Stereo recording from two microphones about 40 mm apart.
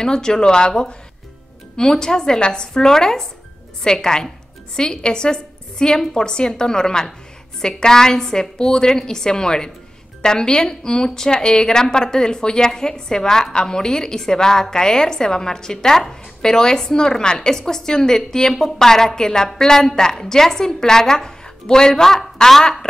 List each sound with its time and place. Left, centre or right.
0.0 s a woman's voice: centre